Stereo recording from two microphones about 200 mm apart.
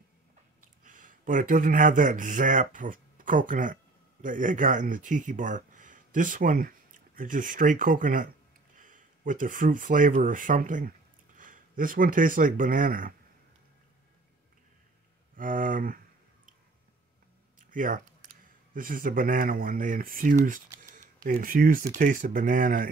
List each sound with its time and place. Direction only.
0.8 s speech: 40° right (ahead or behind)
15.3 s speech: 40° right (ahead or behind)
17.6 s speech: 40° right (ahead or behind)